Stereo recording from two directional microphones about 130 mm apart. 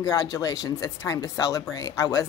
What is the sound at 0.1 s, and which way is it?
Speech, 25° left (ahead or behind).